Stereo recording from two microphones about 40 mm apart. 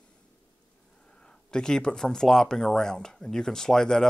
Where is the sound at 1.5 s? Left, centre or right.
Centre.